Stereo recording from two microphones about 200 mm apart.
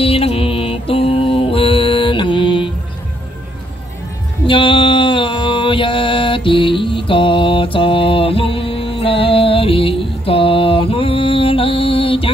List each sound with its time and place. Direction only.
0.0 s mantra: 30° left (ahead or behind)
4.5 s mantra: 25° left (ahead or behind)